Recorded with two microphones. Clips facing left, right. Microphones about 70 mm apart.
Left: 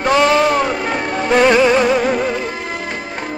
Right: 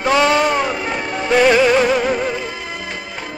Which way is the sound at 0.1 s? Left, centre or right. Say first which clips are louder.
Left 1 dB; centre.